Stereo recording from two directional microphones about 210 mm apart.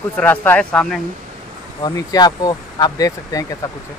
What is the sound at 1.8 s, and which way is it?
Speech, 20° left (ahead or behind).